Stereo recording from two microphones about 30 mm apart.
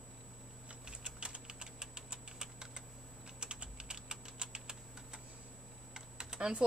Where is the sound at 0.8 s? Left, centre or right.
Right.